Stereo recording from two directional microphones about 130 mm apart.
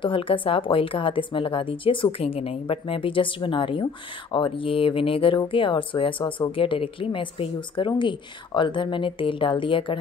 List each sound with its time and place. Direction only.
0.0 s speech: 40° left (ahead or behind)